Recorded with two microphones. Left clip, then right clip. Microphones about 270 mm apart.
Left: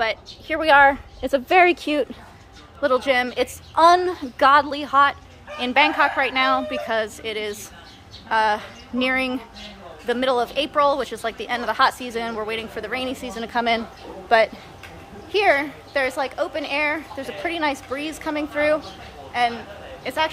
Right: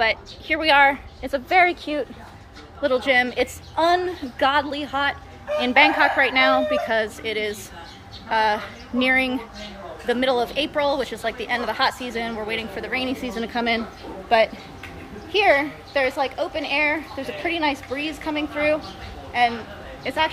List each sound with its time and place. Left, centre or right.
0.0 s speech: centre; by 2.0 s left
2.8 s a woman's voice: centre